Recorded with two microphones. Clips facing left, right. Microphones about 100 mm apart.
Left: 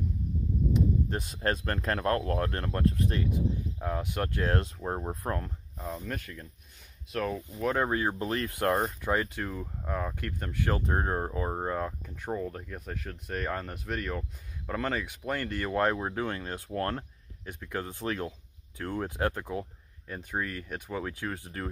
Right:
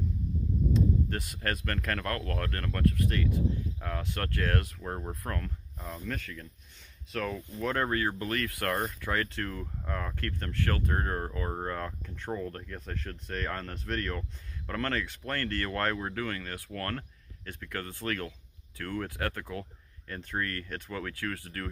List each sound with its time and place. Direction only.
0.7 s speech: 20° left (ahead or behind)
5.8 s speech: 5° left (ahead or behind)
6.1 s speech: 15° left (ahead or behind)